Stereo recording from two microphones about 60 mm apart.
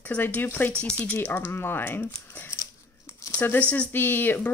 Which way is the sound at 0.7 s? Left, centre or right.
Centre.